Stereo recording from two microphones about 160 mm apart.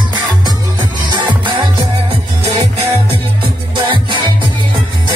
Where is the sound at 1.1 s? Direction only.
30° right (ahead or behind).